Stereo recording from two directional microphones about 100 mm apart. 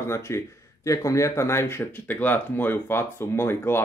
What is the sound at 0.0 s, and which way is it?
Speech, 25° left (ahead or behind).